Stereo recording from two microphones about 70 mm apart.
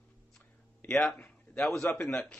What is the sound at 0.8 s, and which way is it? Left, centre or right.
Speech, centre.